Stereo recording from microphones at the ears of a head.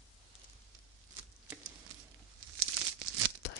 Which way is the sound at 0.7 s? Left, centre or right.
Right.